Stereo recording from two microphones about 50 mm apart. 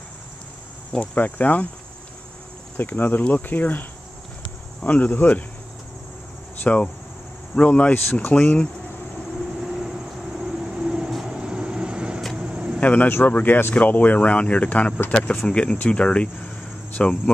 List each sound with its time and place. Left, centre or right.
1.1 s speech: left
2.8 s speech: left
4.8 s speech: left
6.7 s speech: left
7.9 s speech: left
9.7 s vehicle: centre
12.4 s a sound: centre
12.8 s speech: left
13.7 s speech: left